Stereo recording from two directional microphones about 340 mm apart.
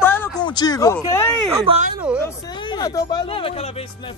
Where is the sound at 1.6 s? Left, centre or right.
Centre.